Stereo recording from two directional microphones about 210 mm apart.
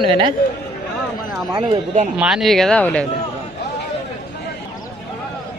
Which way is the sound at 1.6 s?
30° right (ahead or behind).